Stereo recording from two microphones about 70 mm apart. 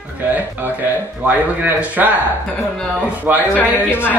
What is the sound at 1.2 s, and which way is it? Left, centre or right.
Speech, right.